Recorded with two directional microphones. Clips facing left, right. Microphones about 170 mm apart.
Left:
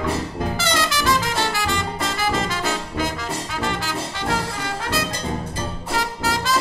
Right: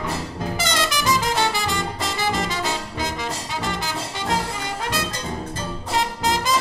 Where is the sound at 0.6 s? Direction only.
20° right (ahead or behind).